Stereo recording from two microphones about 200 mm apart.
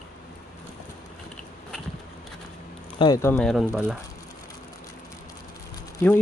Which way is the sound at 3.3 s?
Centre (ahead or behind).